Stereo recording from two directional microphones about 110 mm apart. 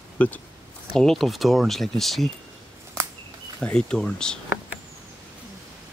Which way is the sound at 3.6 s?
10° left (ahead or behind).